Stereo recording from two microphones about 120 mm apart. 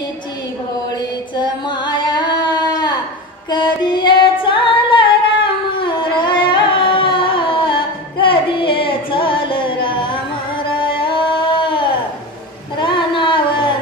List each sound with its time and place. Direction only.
1.3 s singing: 40° left (ahead or behind)
10.7 s music: 45° left (ahead or behind)
12.7 s a sound: 45° left (ahead or behind)